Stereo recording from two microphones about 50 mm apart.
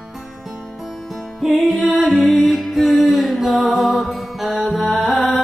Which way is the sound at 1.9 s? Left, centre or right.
Centre.